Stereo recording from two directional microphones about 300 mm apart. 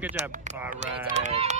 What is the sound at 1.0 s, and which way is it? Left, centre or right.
Speech, right.